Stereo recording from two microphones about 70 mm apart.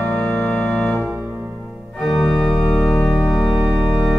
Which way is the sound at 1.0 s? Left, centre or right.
Right.